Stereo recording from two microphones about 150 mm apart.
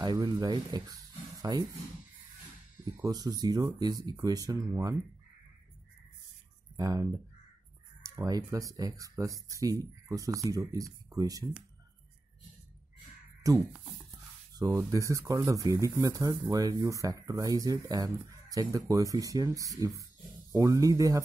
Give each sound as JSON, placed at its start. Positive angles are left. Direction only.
{"t": 0.0, "sound": "speech", "side_deg": -30}
{"t": 3.0, "sound": "speech", "side_deg": -25}
{"t": 6.8, "sound": "speech", "side_deg": -25}
{"t": 13.4, "sound": "speech", "side_deg": -20}